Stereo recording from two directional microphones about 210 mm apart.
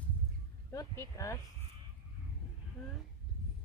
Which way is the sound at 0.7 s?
15° left (ahead or behind).